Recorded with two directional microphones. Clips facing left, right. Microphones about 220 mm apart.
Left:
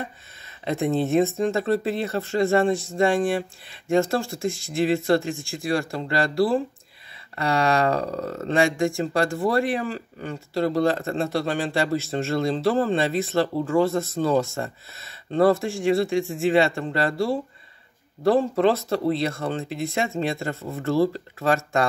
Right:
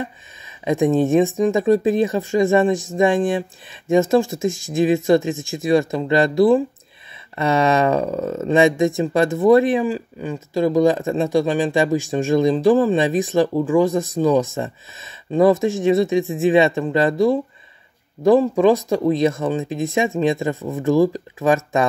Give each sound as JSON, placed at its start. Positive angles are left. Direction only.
{"t": 0.5, "sound": "speech", "side_deg": -15}